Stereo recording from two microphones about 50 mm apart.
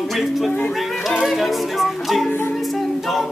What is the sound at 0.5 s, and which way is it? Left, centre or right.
Speech, left.